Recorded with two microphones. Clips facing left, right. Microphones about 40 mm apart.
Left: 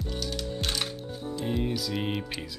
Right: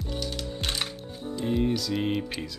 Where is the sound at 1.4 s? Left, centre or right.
Centre.